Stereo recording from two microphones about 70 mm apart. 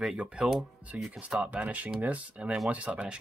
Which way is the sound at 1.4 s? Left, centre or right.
Right.